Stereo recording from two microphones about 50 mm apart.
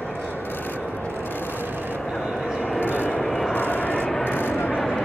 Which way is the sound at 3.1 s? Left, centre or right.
Centre.